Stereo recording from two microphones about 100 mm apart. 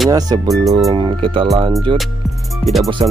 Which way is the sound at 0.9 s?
60° right (ahead or behind).